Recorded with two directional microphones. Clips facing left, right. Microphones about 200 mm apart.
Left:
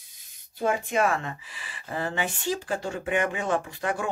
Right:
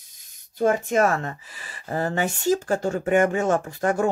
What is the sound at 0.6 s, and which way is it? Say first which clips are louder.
Speech: right 5 dB; 45° right (ahead or behind).